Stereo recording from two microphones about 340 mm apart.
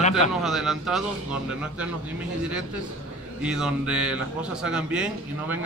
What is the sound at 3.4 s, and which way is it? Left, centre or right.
A man's voice, centre.